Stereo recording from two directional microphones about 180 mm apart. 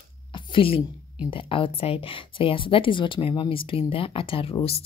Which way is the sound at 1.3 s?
30° left (ahead or behind).